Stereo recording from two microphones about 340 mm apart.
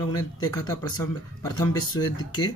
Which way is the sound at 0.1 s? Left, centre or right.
Centre.